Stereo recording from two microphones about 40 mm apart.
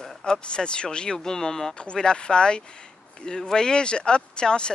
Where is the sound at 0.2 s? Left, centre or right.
Left.